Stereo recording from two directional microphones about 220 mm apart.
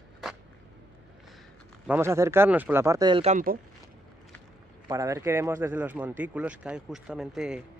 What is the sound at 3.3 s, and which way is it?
Speech, 40° right (ahead or behind).